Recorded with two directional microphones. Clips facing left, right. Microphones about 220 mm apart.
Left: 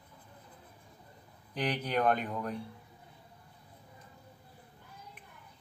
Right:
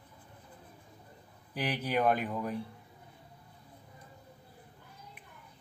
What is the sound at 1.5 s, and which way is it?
Speech, 5° right (ahead or behind).